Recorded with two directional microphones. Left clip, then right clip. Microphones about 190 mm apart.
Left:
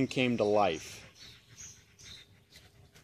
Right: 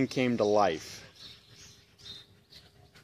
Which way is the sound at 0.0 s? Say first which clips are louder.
Right 2 dB; 5° left (ahead or behind).